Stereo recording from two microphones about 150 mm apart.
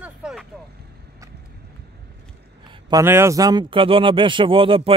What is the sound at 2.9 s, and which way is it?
A man's voice, 15° right (ahead or behind).